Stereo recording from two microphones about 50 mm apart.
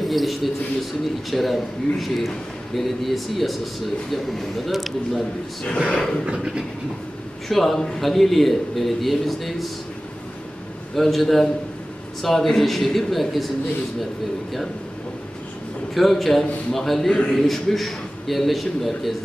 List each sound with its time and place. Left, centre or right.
0.0 s a man's voice: centre
5.9 s a sound: centre
7.4 s a man's voice: centre
11.0 s a man's voice: centre
15.9 s a man's voice: centre